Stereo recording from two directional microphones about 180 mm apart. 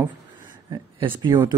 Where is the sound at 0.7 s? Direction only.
25° right (ahead or behind).